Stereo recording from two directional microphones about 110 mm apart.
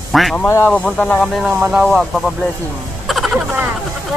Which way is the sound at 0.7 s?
10° left (ahead or behind).